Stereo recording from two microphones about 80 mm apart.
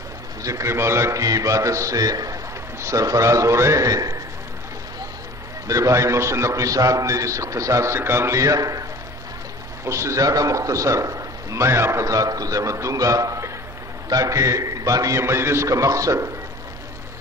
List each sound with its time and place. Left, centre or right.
0.4 s a man's voice: right
5.7 s a man's voice: right
9.8 s a man's voice: right